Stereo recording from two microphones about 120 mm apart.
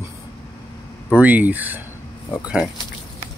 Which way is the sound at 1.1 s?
15° right (ahead or behind).